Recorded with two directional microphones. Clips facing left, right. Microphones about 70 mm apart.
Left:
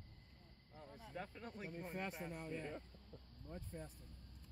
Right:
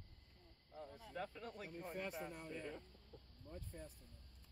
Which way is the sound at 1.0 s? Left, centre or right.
Left.